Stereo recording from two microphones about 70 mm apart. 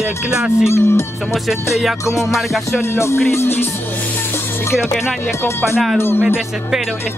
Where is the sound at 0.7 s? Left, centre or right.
Left.